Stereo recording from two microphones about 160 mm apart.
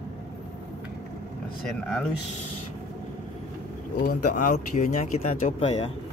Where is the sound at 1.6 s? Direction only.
5° left (ahead or behind).